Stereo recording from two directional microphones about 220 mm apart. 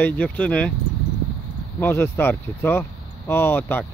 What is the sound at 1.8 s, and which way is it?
Speech, 10° left (ahead or behind).